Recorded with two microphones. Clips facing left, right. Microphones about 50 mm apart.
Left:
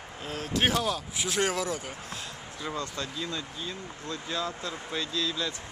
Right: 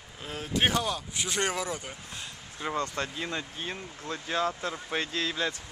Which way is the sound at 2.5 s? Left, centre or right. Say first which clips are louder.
Right 3 dB; right.